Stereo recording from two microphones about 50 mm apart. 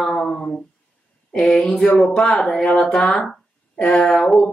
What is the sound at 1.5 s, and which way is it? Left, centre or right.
Speech, centre.